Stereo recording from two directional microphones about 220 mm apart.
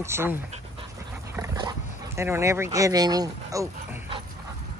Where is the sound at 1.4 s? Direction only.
15° right (ahead or behind).